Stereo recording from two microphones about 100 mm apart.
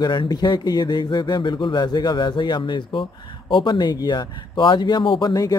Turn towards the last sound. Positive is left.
turn(degrees=55)  # may be behind; listen again after turning